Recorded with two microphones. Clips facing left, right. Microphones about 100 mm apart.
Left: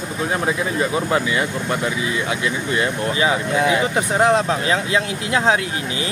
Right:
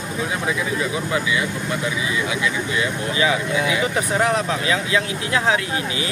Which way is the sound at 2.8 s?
40° left (ahead or behind).